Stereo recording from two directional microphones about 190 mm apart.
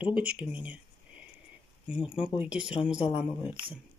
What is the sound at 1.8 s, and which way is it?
Speech, 5° right (ahead or behind).